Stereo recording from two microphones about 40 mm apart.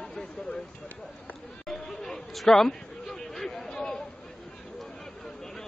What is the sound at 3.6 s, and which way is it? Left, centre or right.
Chatter, centre.